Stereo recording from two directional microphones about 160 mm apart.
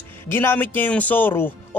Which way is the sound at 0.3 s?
15° left (ahead or behind).